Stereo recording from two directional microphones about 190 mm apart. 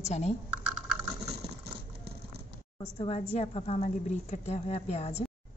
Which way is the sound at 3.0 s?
35° left (ahead or behind).